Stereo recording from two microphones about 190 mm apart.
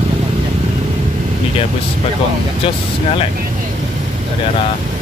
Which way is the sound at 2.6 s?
30° left (ahead or behind).